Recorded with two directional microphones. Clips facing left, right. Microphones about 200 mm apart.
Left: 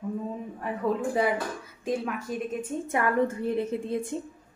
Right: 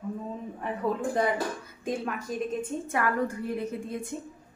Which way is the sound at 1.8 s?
Centre (ahead or behind).